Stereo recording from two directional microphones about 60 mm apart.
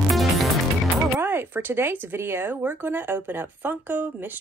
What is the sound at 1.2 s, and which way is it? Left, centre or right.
Speech, right.